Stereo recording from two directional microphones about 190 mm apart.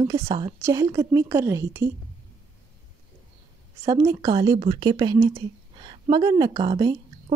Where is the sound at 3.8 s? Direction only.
20° right (ahead or behind).